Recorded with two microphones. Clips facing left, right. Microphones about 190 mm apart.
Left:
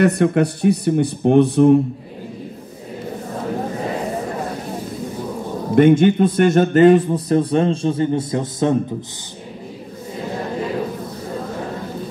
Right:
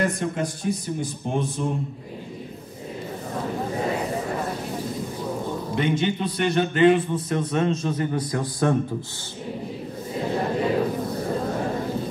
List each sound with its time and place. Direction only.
0.0 s speech: 65° left (ahead or behind)
5.8 s a man's voice: 50° left (ahead or behind); by 8.7 s 20° left (ahead or behind)